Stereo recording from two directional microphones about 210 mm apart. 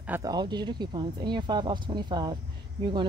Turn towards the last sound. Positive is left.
turn(degrees=-20)  # may be behind; listen again after turning